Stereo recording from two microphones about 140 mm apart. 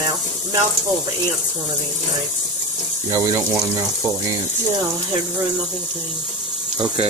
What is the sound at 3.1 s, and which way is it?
Speech, 25° right (ahead or behind).